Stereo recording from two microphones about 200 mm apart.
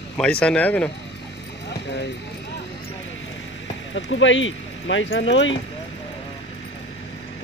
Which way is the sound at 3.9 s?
70° left (ahead or behind).